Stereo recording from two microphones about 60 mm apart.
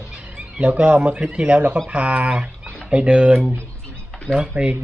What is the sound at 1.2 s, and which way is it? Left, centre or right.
Speech, centre.